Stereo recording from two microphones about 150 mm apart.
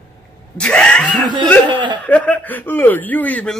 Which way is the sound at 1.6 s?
35° right (ahead or behind).